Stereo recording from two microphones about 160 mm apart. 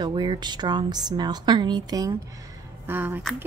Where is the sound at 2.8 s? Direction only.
15° right (ahead or behind).